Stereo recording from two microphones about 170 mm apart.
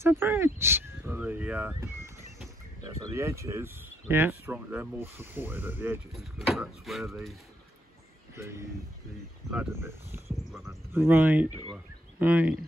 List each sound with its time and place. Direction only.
0.0 s speech: 15° right (ahead or behind)
6.1 s speech: centre (ahead or behind)
8.4 s speech: 15° right (ahead or behind)